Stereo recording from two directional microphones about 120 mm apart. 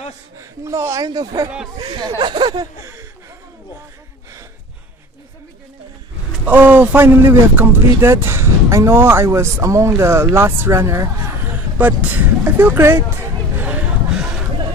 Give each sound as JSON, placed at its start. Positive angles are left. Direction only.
{"t": 0.4, "sound": "speech", "side_deg": -25}
{"t": 6.4, "sound": "speech", "side_deg": -15}
{"t": 13.6, "sound": "a sound", "side_deg": -10}